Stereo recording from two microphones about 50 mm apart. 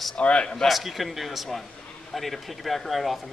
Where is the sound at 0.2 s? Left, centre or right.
Left.